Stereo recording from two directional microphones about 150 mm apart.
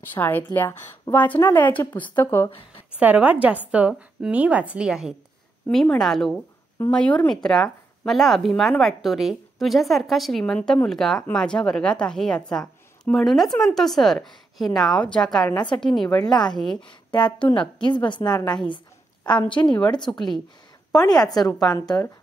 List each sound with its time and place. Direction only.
0.0 s speech: 15° left (ahead or behind)
3.0 s a woman's voice: 10° right (ahead or behind)
17.1 s a woman's voice: 30° left (ahead or behind)
20.1 s speech: 5° left (ahead or behind)
21.5 s a woman's voice: 25° left (ahead or behind)